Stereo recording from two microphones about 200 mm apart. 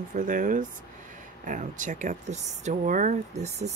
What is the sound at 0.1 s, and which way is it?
Speech, 40° right (ahead or behind).